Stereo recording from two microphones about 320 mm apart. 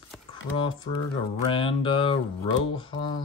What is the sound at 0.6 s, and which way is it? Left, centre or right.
Speech, centre.